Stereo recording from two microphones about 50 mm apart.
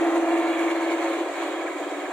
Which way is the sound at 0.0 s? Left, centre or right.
Centre.